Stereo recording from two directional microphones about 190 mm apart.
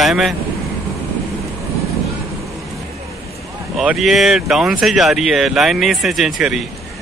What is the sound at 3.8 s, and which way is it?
Speech, centre (ahead or behind).